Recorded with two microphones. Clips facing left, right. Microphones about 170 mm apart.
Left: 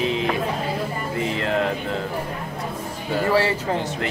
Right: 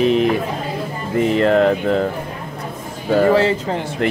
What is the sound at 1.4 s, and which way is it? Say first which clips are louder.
Speech: right 10 dB; 60° right (ahead or behind).